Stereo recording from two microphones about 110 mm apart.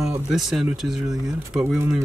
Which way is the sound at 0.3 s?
5° right (ahead or behind).